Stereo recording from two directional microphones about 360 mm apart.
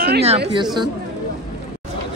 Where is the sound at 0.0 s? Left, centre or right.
Right.